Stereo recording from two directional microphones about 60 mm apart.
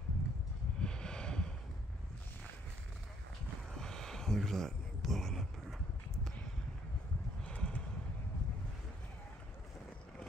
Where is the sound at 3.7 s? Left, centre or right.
Centre.